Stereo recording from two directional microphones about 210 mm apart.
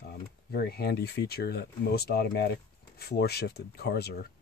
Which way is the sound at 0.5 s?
50° left (ahead or behind).